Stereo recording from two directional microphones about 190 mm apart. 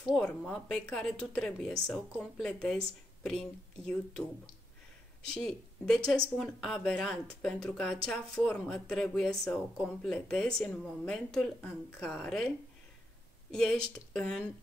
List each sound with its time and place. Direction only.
0.1 s speech: centre (ahead or behind)
5.3 s speech: 5° left (ahead or behind)
13.5 s speech: 5° left (ahead or behind)